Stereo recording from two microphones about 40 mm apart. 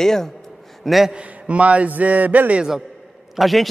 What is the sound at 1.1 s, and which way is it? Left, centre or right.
A man's voice, right.